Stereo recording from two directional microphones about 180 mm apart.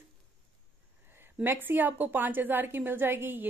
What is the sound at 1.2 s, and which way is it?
A woman's voice, 10° right (ahead or behind).